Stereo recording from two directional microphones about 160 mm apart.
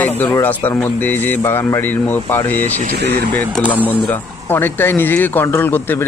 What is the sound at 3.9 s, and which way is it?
Speech, 10° left (ahead or behind).